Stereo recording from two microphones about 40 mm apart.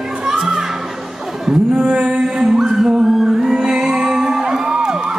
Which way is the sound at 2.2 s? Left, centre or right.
Centre.